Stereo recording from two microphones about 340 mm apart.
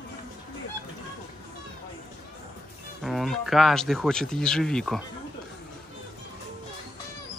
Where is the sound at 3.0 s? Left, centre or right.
Centre.